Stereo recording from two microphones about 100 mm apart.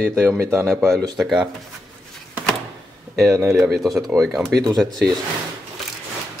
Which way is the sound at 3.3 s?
25° right (ahead or behind).